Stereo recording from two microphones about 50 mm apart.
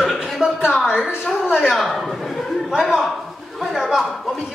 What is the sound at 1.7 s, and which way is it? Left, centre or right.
Speech, centre.